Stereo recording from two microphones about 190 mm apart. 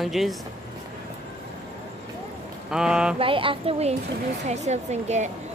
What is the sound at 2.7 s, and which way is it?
Speech, 5° right (ahead or behind).